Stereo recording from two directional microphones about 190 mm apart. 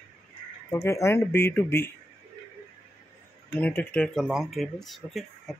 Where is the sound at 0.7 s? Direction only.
15° left (ahead or behind).